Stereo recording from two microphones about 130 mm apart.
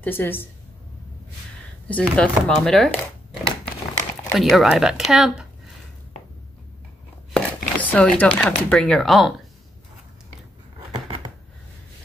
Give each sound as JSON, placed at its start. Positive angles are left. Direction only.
{"t": 0.0, "sound": "speech", "side_deg": 15}
{"t": 1.9, "sound": "speech", "side_deg": 10}
{"t": 4.3, "sound": "speech", "side_deg": 0}
{"t": 7.3, "sound": "speech", "side_deg": 10}